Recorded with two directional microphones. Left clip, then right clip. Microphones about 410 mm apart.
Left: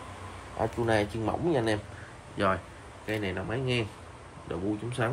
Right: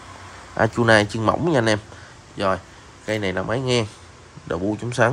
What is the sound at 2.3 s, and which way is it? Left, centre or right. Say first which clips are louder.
Speech: right 6 dB; centre.